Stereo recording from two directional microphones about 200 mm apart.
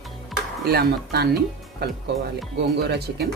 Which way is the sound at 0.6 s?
50° right (ahead or behind).